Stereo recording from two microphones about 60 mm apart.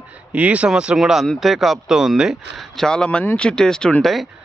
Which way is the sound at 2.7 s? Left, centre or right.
Centre.